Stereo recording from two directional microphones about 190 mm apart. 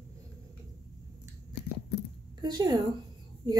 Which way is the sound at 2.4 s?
20° right (ahead or behind).